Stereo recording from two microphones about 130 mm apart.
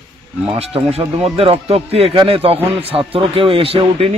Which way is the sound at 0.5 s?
50° right (ahead or behind).